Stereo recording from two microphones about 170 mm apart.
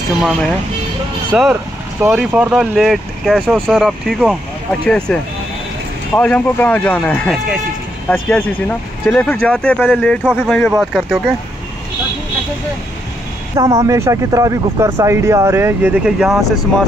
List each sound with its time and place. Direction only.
0.2 s speech: centre (ahead or behind)
13.6 s speech: 20° right (ahead or behind); by 16.5 s centre (ahead or behind)